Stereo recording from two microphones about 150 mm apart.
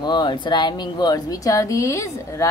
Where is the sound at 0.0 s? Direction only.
30° left (ahead or behind).